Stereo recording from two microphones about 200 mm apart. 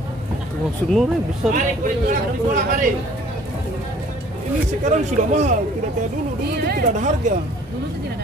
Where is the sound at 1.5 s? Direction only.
40° right (ahead or behind).